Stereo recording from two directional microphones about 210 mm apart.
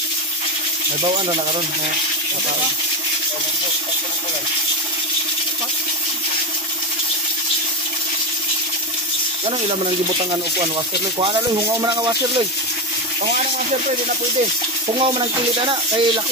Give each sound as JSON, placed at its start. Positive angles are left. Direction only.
{"t": 11.1, "sound": "speech", "side_deg": -20}
{"t": 13.2, "sound": "speech", "side_deg": -35}
{"t": 15.1, "sound": "speech", "side_deg": -25}